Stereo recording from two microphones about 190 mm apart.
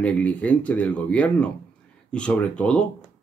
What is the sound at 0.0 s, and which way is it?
Speech, 5° left (ahead or behind).